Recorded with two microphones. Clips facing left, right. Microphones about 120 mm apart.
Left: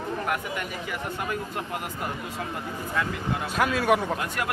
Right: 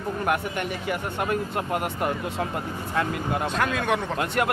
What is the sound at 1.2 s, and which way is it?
Speech, 55° right (ahead or behind).